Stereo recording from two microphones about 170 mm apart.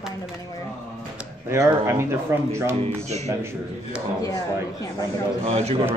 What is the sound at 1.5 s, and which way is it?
Speech, 15° right (ahead or behind).